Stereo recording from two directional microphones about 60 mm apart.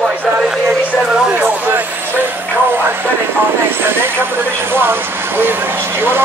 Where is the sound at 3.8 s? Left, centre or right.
Right.